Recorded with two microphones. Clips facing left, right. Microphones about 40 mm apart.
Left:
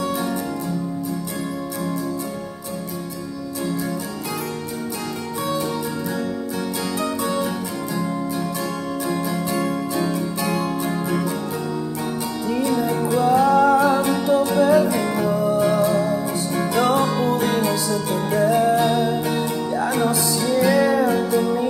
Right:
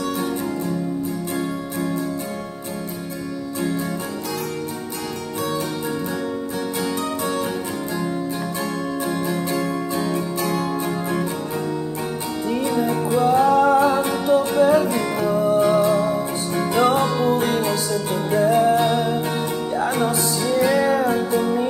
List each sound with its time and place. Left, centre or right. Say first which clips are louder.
6.8 s music: even; right
9.0 s music: left 1 dB; right
11.1 s music: left 1 dB; right
12.4 s music: even; right
13.3 s music: even; right
13.8 s music: even; centre